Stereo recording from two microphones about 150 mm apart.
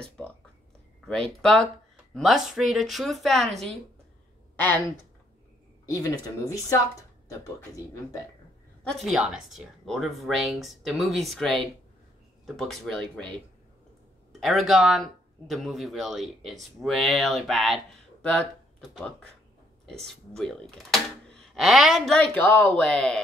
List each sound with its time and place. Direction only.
1.0 s speech: 5° left (ahead or behind)
5.9 s speech: 25° left (ahead or behind)
8.8 s speech: centre (ahead or behind)
14.4 s speech: centre (ahead or behind)